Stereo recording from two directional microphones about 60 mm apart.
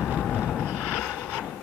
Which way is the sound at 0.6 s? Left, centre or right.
Centre.